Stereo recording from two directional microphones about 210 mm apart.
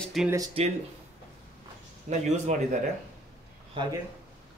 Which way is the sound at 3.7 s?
20° right (ahead or behind).